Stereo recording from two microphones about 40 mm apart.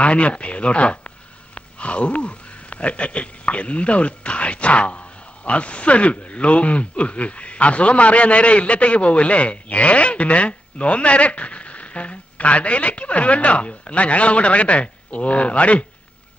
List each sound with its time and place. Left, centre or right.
0.0 s speech: left